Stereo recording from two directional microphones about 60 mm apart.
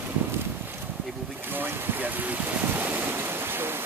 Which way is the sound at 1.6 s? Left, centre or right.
Right.